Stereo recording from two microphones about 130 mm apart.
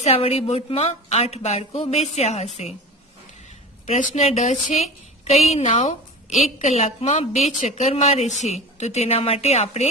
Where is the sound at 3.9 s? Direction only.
65° left (ahead or behind).